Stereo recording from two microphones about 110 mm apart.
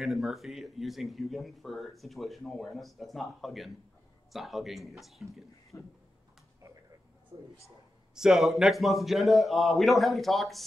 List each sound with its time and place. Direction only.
0.0 s speech: centre (ahead or behind)
5.7 s a sound: 30° left (ahead or behind)
7.3 s speech: 50° right (ahead or behind)
8.1 s speech: 5° right (ahead or behind)